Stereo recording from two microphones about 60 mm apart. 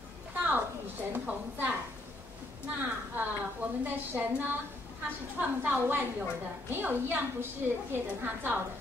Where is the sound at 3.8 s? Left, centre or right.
Right.